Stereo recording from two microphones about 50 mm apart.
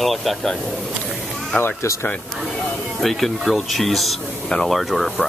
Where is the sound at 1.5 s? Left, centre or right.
Left.